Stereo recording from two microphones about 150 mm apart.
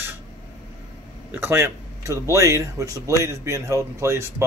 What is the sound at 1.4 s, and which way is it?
Speech, 15° right (ahead or behind).